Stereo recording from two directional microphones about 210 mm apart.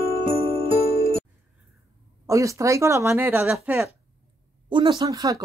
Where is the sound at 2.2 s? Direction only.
15° right (ahead or behind).